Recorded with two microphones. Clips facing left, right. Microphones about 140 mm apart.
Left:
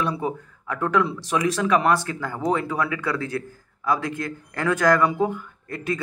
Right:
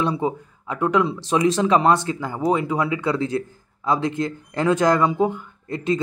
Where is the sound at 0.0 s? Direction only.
20° right (ahead or behind).